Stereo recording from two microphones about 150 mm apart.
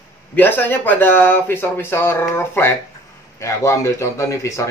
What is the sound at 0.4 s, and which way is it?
A man's voice, 15° left (ahead or behind).